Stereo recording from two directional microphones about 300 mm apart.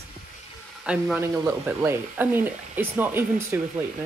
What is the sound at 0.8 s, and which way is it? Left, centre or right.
Speech, centre.